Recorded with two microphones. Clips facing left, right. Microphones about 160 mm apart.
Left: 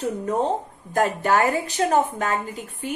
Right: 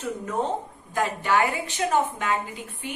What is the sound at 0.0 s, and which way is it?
A woman's voice, 35° left (ahead or behind).